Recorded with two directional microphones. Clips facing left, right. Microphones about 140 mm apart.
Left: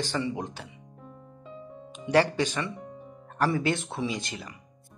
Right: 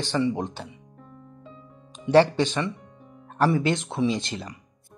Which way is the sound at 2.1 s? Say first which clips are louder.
Right 5 dB; 25° right (ahead or behind).